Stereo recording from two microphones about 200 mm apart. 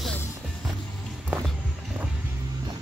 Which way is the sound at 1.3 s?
5° right (ahead or behind).